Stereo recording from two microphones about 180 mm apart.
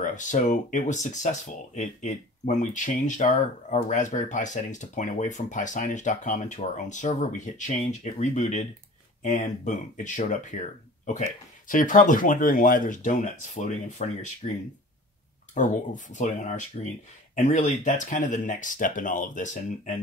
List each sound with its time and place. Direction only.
0.0 s speech: 45° left (ahead or behind)
15.5 s speech: 45° left (ahead or behind)